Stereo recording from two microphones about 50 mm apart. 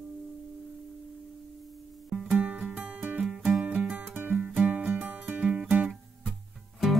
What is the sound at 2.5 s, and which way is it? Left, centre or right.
Music, centre.